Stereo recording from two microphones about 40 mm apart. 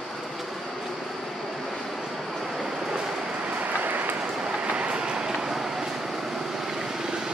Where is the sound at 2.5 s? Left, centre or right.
Centre.